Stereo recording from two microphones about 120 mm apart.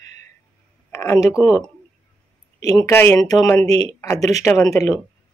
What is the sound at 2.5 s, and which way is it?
Speech, 30° left (ahead or behind).